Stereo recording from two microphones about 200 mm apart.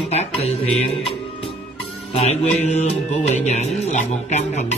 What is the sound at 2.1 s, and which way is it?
Music, 30° left (ahead or behind).